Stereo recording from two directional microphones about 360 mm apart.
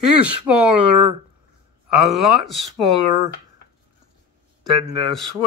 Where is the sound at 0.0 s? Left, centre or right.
Right.